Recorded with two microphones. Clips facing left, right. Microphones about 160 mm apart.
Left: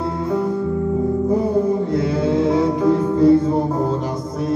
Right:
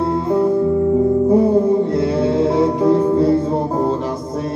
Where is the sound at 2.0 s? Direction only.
30° right (ahead or behind).